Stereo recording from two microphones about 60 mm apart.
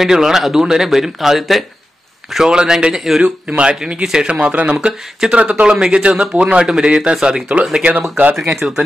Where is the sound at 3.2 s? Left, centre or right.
Centre.